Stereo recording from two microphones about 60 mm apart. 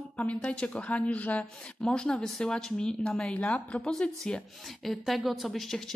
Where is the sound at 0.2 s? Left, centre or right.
Centre.